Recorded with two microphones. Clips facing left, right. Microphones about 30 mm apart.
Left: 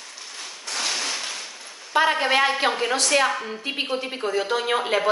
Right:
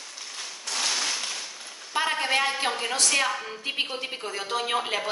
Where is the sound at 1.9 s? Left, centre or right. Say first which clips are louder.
Left 5 dB; centre.